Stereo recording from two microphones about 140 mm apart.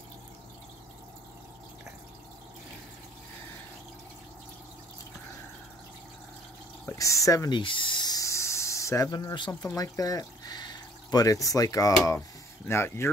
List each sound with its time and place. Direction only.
7.0 s speech: 25° left (ahead or behind)